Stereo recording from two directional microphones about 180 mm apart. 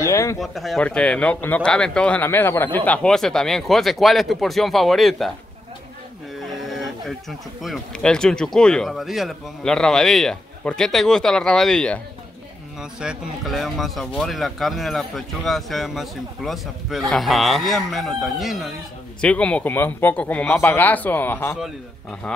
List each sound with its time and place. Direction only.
0.0 s a sound: 15° left (ahead or behind)
0.4 s speech: centre (ahead or behind)
6.6 s speech: centre (ahead or behind)
13.0 s speech: 5° right (ahead or behind)